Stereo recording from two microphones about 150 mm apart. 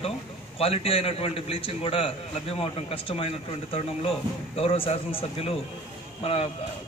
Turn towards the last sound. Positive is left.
turn(degrees=40)  # may be behind; listen again after turning